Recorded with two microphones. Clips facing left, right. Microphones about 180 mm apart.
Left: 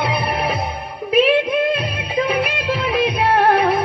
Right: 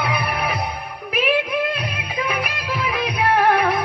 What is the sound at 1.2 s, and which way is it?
Music, 25° left (ahead or behind).